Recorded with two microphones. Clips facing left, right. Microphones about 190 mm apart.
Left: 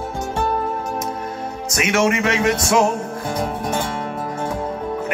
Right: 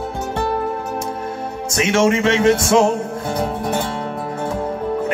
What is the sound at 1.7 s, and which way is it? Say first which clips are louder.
Music: right 3 dB; 25° right (ahead or behind).